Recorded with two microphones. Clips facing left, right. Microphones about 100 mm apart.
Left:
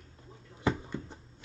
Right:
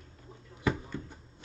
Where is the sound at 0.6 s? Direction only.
25° left (ahead or behind).